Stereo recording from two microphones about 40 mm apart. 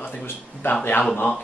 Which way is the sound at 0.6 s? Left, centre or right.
Left.